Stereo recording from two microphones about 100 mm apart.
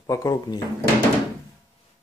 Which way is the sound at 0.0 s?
35° left (ahead or behind).